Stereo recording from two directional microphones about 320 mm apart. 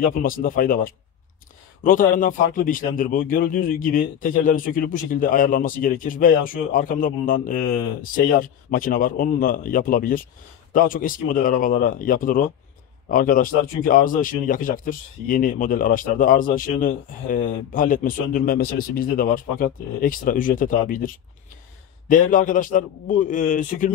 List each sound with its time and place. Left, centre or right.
0.1 s speech: left